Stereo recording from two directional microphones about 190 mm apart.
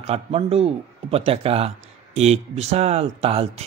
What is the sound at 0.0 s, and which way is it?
Speech, 30° right (ahead or behind).